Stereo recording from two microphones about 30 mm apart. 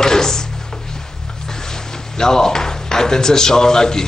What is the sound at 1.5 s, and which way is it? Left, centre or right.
Speech, centre.